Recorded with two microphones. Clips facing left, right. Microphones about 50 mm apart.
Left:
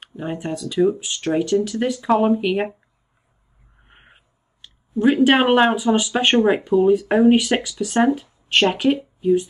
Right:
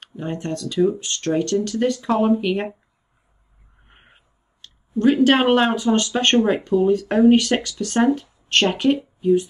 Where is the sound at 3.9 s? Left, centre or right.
Centre.